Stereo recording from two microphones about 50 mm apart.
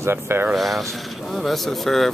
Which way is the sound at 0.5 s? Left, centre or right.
Centre.